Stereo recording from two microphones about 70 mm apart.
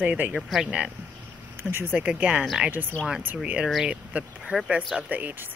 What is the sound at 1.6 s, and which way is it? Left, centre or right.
Speech, right.